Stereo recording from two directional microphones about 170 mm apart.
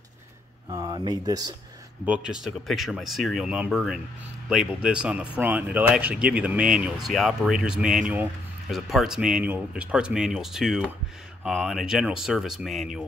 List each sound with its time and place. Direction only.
0.7 s speech: 25° right (ahead or behind)
2.0 s speech: 5° right (ahead or behind)